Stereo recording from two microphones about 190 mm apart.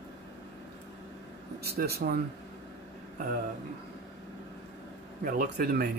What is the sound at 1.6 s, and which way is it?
Speech, 55° right (ahead or behind).